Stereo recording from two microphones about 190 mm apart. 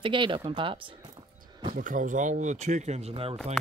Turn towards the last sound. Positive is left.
turn(degrees=-30)  # may be behind; listen again after turning